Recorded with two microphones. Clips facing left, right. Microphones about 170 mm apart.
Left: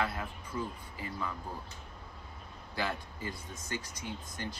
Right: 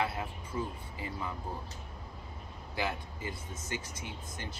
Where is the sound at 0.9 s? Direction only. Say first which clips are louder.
Left 1 dB; 20° right (ahead or behind).